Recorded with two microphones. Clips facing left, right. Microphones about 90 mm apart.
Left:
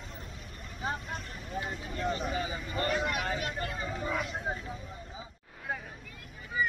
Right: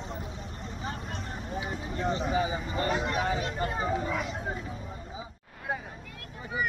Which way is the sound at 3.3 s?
30° right (ahead or behind).